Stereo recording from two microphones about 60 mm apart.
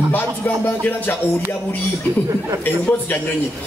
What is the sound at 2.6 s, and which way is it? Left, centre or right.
Speech, left.